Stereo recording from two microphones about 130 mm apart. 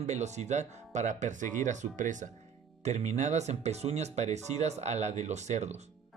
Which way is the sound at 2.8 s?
65° right (ahead or behind).